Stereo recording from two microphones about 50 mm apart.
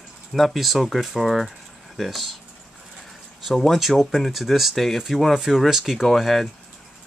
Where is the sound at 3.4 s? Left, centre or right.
Centre.